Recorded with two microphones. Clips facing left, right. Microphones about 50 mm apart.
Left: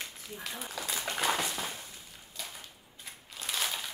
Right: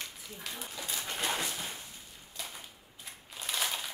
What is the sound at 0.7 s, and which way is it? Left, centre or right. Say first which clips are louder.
Speech: left 4 dB; left.